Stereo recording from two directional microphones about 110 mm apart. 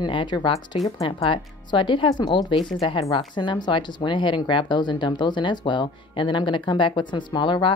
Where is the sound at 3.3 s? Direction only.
45° left (ahead or behind).